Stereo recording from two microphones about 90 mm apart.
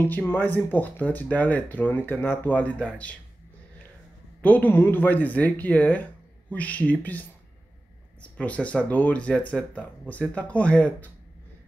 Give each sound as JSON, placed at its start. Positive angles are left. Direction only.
{"t": 0.0, "sound": "speech", "side_deg": 20}
{"t": 4.4, "sound": "speech", "side_deg": 15}